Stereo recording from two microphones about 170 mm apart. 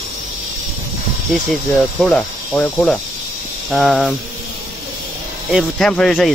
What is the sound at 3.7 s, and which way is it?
Speech, centre (ahead or behind).